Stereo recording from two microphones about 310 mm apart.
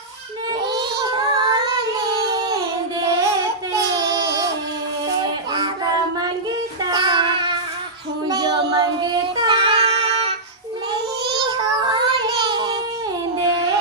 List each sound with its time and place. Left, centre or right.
0.7 s child singing: centre
3.7 s baby cry: centre
5.2 s a sound: centre
8.3 s child singing: centre